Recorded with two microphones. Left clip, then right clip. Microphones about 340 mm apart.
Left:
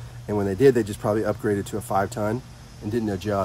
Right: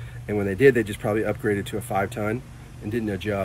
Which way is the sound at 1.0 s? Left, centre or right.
Centre.